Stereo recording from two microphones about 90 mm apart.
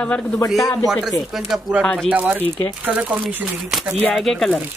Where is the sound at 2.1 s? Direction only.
15° right (ahead or behind).